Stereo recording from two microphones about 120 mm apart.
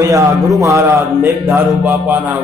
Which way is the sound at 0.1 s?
25° right (ahead or behind).